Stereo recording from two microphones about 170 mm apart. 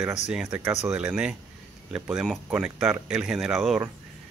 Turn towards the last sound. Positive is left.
turn(degrees=-5)  # may be behind; listen again after turning